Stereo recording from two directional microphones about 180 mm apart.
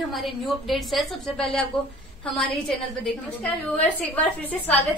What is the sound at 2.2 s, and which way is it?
A woman's voice, 5° left (ahead or behind).